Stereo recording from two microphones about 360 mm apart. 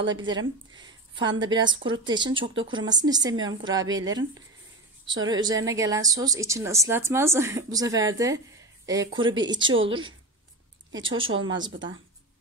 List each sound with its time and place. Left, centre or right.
0.1 s a woman's voice: centre
5.2 s a woman's voice: centre
9.7 s a woman's voice: right